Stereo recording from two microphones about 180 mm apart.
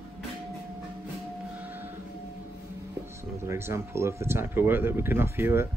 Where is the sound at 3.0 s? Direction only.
15° right (ahead or behind).